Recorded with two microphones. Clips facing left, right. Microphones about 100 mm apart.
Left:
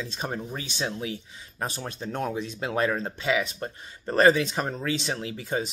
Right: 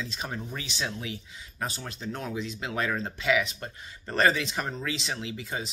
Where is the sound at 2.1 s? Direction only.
45° left (ahead or behind).